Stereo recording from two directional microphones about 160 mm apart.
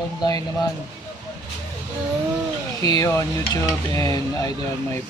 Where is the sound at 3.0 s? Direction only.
20° left (ahead or behind).